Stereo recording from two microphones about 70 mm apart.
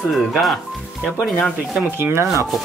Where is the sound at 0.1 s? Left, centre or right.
Centre.